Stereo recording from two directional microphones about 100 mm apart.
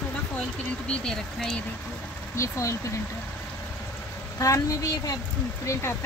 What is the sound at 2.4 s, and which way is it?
Speech, 30° left (ahead or behind).